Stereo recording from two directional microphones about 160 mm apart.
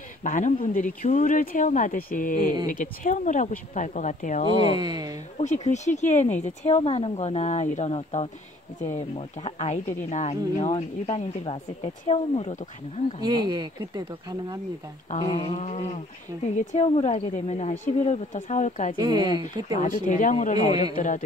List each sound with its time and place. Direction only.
0.2 s speech: 50° left (ahead or behind)
4.7 s speech: 25° right (ahead or behind)
5.4 s speech: 45° left (ahead or behind)
13.2 s speech: 25° right (ahead or behind)
15.2 s speech: 30° left (ahead or behind)
15.6 s speech: 45° left (ahead or behind)
18.9 s speech: 25° right (ahead or behind)
19.8 s speech: 50° left (ahead or behind)